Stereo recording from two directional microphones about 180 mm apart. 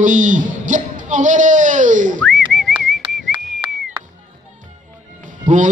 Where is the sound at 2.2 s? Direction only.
Centre (ahead or behind).